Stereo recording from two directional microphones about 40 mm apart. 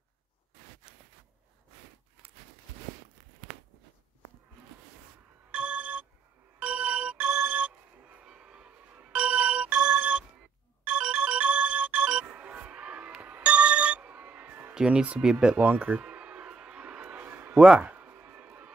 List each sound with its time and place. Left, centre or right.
5.5 s telephone: right
6.6 s ringtone: right
8.9 s music: right
14.9 s speech: right
15.5 s speech: right
16.0 s a sound: right
17.2 s a sound: right
17.7 s a sound: right
18.1 s music: right